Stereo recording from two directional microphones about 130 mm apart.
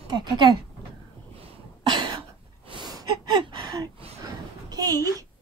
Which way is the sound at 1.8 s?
35° right (ahead or behind).